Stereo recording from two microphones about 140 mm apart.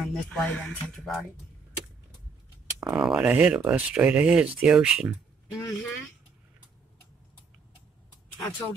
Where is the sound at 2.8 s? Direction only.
5° right (ahead or behind).